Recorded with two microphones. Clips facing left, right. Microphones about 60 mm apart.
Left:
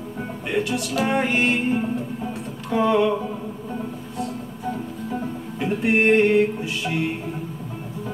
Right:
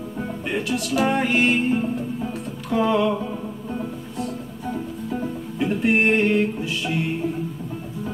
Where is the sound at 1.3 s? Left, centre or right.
Centre.